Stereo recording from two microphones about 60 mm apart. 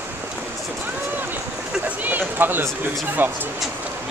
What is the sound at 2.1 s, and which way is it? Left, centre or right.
Speech, right.